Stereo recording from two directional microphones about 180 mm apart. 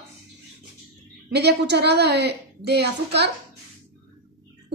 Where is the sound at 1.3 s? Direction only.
70° right (ahead or behind).